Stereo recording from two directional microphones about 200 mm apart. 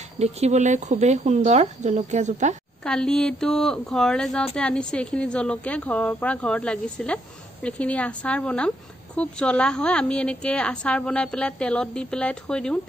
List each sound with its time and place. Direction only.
0.2 s speech: 35° right (ahead or behind)
2.8 s speech: 5° left (ahead or behind)